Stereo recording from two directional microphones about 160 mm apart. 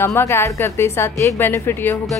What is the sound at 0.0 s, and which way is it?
Speech, 15° left (ahead or behind).